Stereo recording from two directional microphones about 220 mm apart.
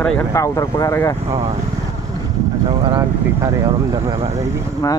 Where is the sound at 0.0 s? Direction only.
10° left (ahead or behind).